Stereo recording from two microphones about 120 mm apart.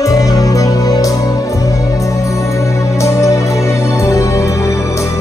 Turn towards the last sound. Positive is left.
turn(degrees=25)  # may be behind; listen again after turning